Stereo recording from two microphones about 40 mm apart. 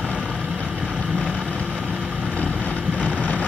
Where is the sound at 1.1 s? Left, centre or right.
Left.